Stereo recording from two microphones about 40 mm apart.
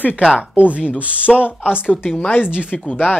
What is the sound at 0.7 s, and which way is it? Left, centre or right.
Speech, right.